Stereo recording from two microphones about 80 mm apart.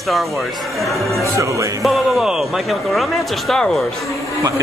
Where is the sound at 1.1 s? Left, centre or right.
Right.